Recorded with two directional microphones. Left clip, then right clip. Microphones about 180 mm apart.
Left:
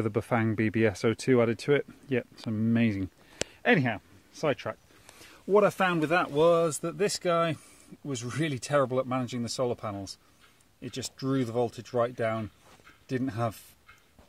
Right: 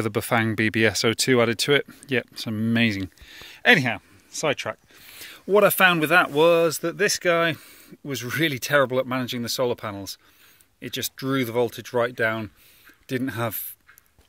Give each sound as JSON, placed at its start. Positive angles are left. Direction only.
{"t": 0.0, "sound": "speech", "side_deg": -5}
{"t": 5.2, "sound": "speech", "side_deg": -15}